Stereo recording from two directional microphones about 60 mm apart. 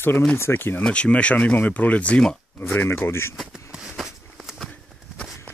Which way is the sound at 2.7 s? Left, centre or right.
Left.